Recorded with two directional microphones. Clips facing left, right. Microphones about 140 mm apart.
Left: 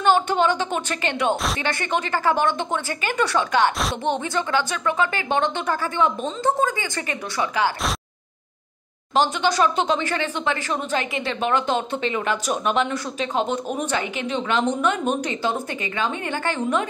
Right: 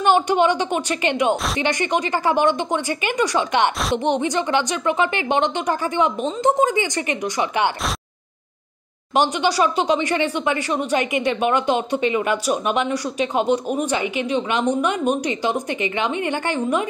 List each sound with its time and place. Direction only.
0.0 s speech: 15° right (ahead or behind)
1.3 s speech: centre (ahead or behind)
1.6 s speech: 15° right (ahead or behind)
9.1 s speech: 15° right (ahead or behind)